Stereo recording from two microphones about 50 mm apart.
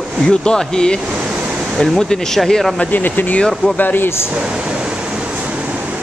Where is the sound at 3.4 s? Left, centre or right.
Centre.